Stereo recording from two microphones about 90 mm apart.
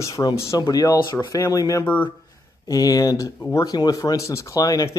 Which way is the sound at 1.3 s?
35° left (ahead or behind).